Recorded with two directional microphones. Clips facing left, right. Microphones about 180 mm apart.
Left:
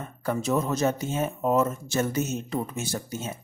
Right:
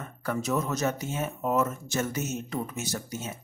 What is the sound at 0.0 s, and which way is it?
Speech, 25° left (ahead or behind).